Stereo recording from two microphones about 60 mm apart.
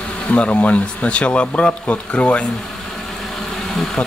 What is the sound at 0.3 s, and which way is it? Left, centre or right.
Speech, left.